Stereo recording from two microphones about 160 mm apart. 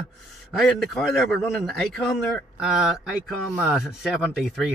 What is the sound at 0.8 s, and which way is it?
A man's voice, centre (ahead or behind).